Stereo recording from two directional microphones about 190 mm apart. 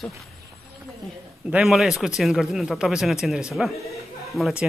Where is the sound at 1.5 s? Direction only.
Centre (ahead or behind).